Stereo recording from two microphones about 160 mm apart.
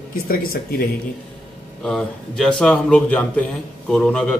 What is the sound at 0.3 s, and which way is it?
Speech, 65° left (ahead or behind).